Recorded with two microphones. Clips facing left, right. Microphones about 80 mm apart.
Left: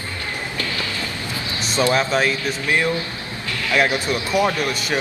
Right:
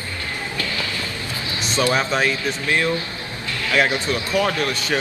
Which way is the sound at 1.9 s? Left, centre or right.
Centre.